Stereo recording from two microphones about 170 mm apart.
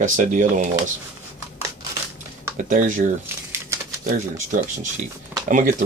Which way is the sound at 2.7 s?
50° right (ahead or behind).